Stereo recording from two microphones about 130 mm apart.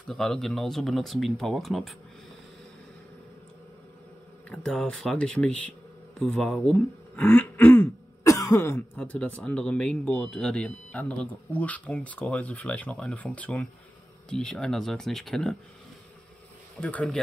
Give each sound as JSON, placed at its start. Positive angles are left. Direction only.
{"t": 0.1, "sound": "speech", "side_deg": 5}
{"t": 4.5, "sound": "speech", "side_deg": 5}
{"t": 8.3, "sound": "throat clearing", "side_deg": 25}
{"t": 8.9, "sound": "speech", "side_deg": 10}
{"t": 16.8, "sound": "speech", "side_deg": 10}